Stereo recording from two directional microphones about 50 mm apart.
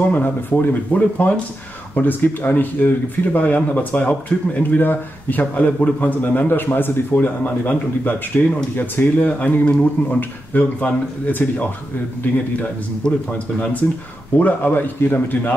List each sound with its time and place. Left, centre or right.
0.2 s speech: left
12.2 s speech: left
13.0 s speech: left
14.3 s speech: left